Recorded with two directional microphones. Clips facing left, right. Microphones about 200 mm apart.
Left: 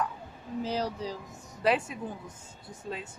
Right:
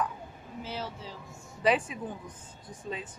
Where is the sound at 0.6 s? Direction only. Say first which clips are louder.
Left 7 dB; 40° left (ahead or behind).